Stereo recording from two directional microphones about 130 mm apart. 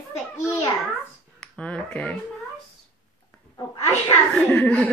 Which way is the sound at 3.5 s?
25° left (ahead or behind).